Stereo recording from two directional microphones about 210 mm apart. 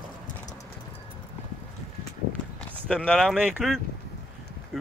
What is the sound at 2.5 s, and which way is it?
Speech, 5° left (ahead or behind).